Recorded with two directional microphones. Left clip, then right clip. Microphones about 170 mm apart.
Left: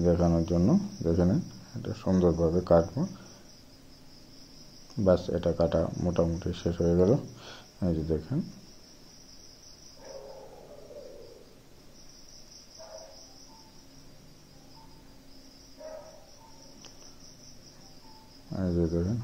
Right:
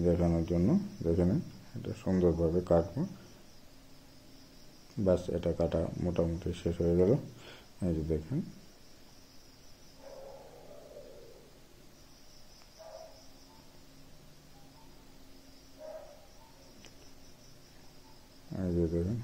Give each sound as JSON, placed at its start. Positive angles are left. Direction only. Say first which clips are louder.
{"t": 0.0, "sound": "speech", "louder": "left 4 dB", "side_deg": -5}
{"t": 5.0, "sound": "speech", "louder": "left 5 dB", "side_deg": -10}
{"t": 18.5, "sound": "cricket", "louder": "left 3 dB", "side_deg": -15}